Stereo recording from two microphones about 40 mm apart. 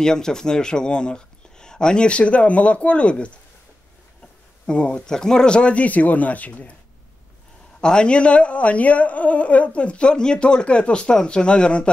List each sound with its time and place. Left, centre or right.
0.0 s speech: centre
4.6 s speech: left
7.8 s speech: left